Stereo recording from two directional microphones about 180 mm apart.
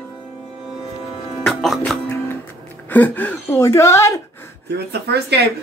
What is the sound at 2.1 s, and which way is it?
Music, 10° left (ahead or behind).